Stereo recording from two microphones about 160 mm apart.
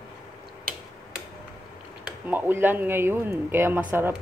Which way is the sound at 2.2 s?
10° right (ahead or behind).